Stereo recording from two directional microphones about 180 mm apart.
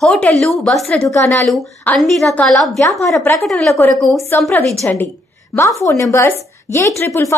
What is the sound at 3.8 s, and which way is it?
A woman's voice, 10° left (ahead or behind).